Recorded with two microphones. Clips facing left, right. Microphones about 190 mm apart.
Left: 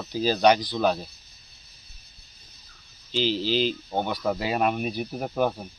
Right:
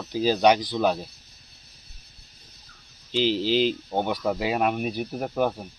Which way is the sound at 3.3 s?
60° right (ahead or behind).